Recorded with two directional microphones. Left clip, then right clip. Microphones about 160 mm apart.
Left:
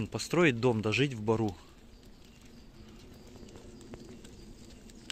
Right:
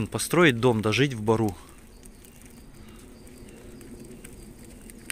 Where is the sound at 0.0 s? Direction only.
5° left (ahead or behind).